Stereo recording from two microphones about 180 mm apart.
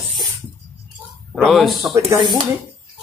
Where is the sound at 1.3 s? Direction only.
Centre (ahead or behind).